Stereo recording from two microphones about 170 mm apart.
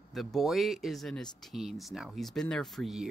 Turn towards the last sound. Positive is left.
turn(degrees=0)  # may be behind; listen again after turning